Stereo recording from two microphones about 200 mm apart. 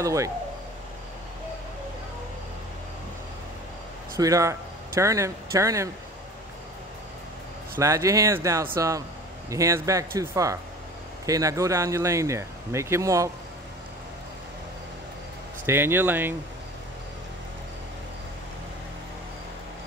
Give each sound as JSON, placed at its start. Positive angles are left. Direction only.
{"t": 0.0, "sound": "speech", "side_deg": -15}
{"t": 4.2, "sound": "speech", "side_deg": -15}
{"t": 7.8, "sound": "speech", "side_deg": -15}
{"t": 15.6, "sound": "speech", "side_deg": -10}